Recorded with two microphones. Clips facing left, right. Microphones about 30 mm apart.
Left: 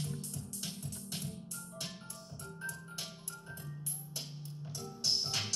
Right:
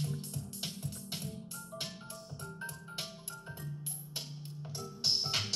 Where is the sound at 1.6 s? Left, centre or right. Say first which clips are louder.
Right 3 dB; right.